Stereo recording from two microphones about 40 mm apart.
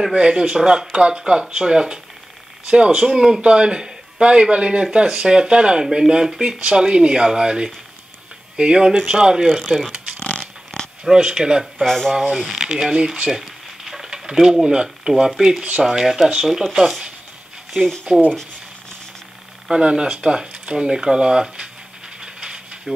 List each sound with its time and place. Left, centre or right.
0.1 s speech: right
5.0 s speech: centre
5.3 s speech: right
10.1 s a sound: left
11.1 s speech: centre
11.8 s speech: centre
12.1 s speech: centre
12.5 s speech: centre
13.4 s stir: centre
15.8 s speech: centre
18.1 s speech: right
19.7 s speech: right
22.2 s steam: right